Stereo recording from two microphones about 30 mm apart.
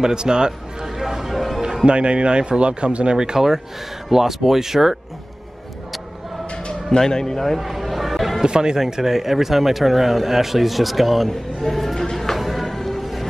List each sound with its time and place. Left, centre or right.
0.0 s speech: right
0.5 s music: centre
1.9 s speech: right
3.3 s speech: centre
7.0 s speech: centre
7.5 s a sound: centre
8.5 s speech: right
8.8 s speech: centre
12.4 s music: centre